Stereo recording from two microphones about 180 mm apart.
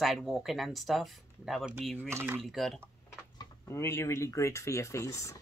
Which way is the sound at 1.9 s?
15° right (ahead or behind).